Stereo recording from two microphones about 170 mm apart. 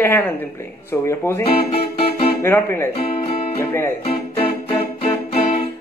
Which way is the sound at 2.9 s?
35° left (ahead or behind).